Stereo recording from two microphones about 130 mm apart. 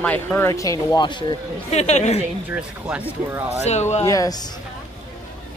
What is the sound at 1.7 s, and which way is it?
Speech, 60° left (ahead or behind).